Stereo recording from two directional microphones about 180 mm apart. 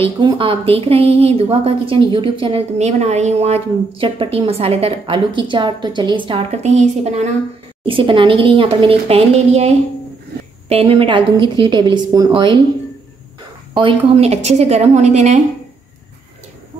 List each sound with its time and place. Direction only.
0.0 s a woman's voice: 30° right (ahead or behind)
13.7 s a woman's voice: 30° right (ahead or behind)